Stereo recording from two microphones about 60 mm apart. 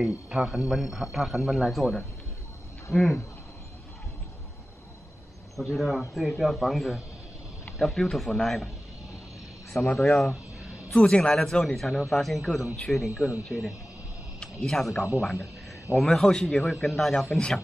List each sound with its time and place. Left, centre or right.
0.0 s speech: centre
5.6 s speech: centre
10.0 s speech: centre
11.0 s a man's voice: centre
16.6 s speech: centre